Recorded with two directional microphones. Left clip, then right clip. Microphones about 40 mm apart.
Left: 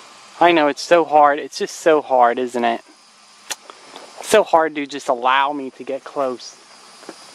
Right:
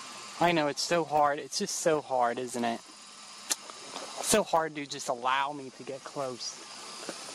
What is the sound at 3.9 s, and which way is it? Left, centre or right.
Speech, left.